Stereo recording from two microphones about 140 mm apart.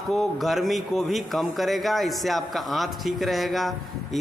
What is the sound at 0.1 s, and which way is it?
A man's voice, centre (ahead or behind).